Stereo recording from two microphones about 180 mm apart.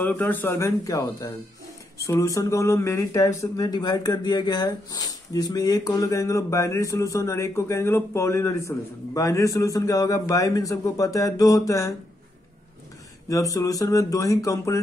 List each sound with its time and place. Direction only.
0.0 s speech: 10° left (ahead or behind)
13.3 s speech: 20° left (ahead or behind)